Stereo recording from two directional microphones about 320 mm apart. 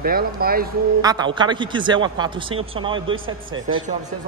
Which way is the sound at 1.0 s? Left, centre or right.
Centre.